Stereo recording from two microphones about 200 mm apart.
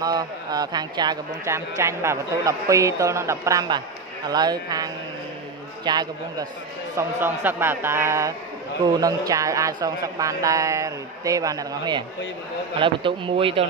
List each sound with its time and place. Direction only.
0.0 s speech: 20° right (ahead or behind)
7.0 s speech: 10° right (ahead or behind); by 13.7 s 25° right (ahead or behind)